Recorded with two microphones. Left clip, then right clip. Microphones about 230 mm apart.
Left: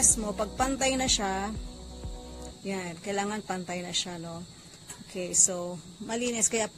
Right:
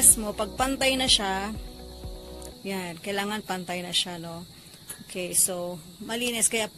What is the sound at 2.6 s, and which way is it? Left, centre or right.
A woman's voice, centre.